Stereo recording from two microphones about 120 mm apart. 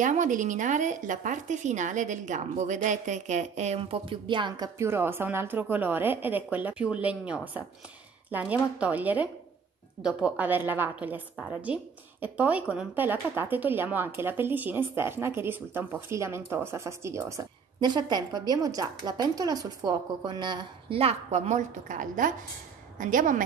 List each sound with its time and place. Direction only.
0.0 s a woman's voice: 90° right; by 4.6 s 40° right (ahead or behind)
4.7 s a woman's voice: 20° right (ahead or behind); by 21.0 s 40° right (ahead or behind)
21.0 s a woman's voice: 65° right (ahead or behind); by 23.4 s 90° right